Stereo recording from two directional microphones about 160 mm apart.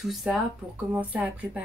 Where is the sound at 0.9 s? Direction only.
10° right (ahead or behind).